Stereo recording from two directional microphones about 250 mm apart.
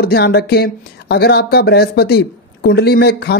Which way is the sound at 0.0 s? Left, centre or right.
Left.